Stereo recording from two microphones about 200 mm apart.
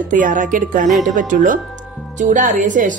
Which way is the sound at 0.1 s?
40° right (ahead or behind).